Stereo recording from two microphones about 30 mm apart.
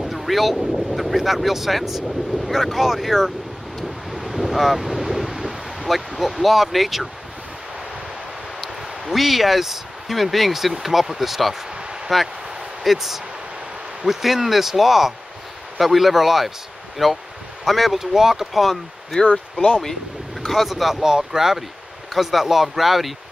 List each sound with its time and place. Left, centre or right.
0.0 s speech: centre
4.1 s ocean: centre
9.0 s speech: centre
18.1 s speech: centre
18.5 s speech: centre
20.4 s speech: centre
20.7 s speech: centre
21.0 s speech: centre